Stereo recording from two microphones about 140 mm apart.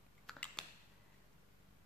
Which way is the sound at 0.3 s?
5° left (ahead or behind).